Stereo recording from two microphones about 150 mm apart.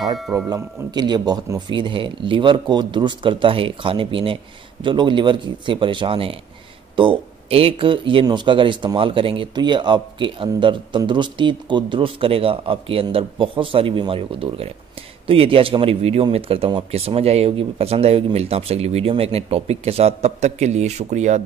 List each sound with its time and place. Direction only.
0.0 s a man's voice: 25° right (ahead or behind); by 21.4 s 50° right (ahead or behind)